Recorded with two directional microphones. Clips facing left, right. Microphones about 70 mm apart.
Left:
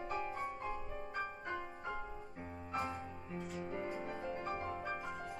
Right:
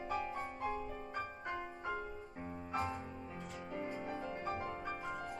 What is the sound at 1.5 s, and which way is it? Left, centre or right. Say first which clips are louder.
Music: right 5 dB; centre.